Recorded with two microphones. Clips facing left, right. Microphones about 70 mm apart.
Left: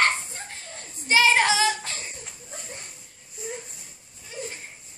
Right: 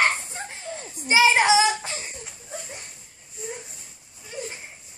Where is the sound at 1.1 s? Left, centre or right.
Centre.